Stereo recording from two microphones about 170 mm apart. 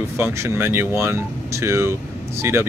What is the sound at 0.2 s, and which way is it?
Speech, 15° right (ahead or behind).